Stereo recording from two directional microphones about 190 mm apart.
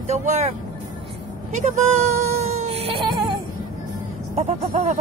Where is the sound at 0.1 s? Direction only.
40° right (ahead or behind).